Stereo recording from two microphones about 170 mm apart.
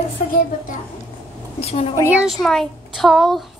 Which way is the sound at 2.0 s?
10° right (ahead or behind).